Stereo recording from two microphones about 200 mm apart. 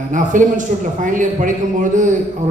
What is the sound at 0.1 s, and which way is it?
A man's voice, 40° right (ahead or behind).